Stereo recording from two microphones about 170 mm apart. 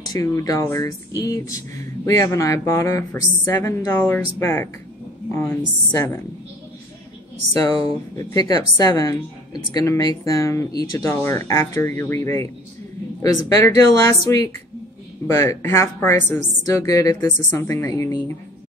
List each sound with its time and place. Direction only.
0.0 s a woman's voice: 20° left (ahead or behind)
7.6 s speech: 20° left (ahead or behind)
13.5 s a woman's voice: 20° left (ahead or behind)